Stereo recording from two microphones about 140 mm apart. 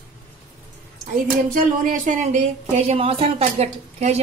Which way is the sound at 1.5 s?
65° right (ahead or behind).